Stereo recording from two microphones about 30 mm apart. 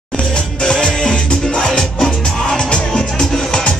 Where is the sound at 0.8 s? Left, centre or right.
Left.